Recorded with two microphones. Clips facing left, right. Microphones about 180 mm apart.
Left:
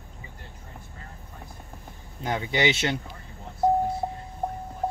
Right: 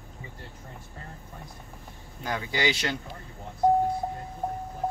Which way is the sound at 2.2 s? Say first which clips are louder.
Left 3 dB; 25° left (ahead or behind).